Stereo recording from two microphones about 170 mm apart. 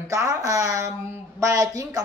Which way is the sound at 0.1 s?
20° right (ahead or behind).